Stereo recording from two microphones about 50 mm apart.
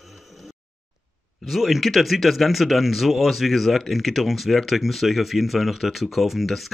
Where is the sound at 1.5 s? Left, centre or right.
Centre.